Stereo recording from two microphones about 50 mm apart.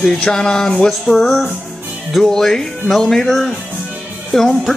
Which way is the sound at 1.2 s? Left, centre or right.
Centre.